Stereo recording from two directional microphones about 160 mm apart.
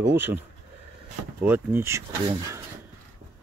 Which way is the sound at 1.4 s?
15° right (ahead or behind).